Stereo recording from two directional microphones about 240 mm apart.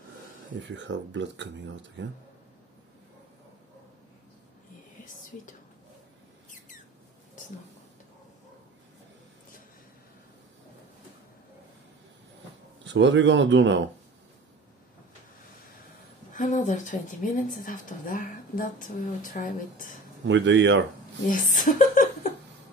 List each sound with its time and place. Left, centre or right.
0.6 s speech: right
5.0 s whispering: left
12.8 s speech: right
16.3 s speech: left
20.2 s speech: right
21.3 s speech: left